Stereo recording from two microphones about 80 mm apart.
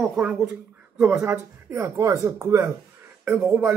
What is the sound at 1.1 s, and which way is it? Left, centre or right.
Speech, right.